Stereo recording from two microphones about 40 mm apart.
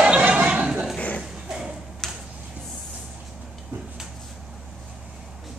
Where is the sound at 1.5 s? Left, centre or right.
Centre.